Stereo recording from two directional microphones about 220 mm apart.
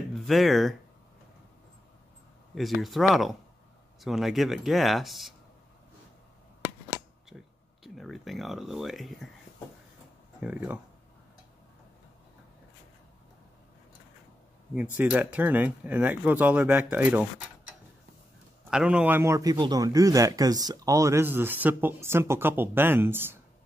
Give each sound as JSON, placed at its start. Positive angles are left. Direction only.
{"t": 0.1, "sound": "speech", "side_deg": 0}
{"t": 2.8, "sound": "speech", "side_deg": 0}
{"t": 7.2, "sound": "speech", "side_deg": 0}
{"t": 10.4, "sound": "a man's voice", "side_deg": -5}
{"t": 15.0, "sound": "a man's voice", "side_deg": -10}
{"t": 18.7, "sound": "a man's voice", "side_deg": -5}